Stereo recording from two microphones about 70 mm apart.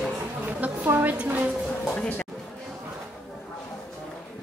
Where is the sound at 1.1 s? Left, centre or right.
Right.